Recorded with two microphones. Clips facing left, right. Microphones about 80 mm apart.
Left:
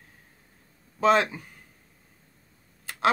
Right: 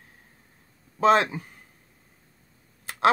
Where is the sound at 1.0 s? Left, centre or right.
Right.